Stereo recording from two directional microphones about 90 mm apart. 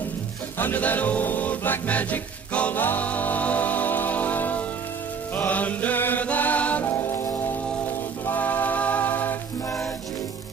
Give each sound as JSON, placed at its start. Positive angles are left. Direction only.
{"t": 0.6, "sound": "music", "side_deg": 20}
{"t": 5.3, "sound": "chant", "side_deg": 20}
{"t": 8.3, "sound": "music", "side_deg": 20}